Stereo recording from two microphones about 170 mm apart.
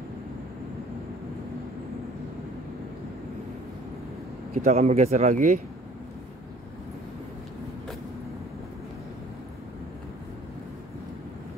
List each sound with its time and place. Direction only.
4.6 s speech: 40° right (ahead or behind)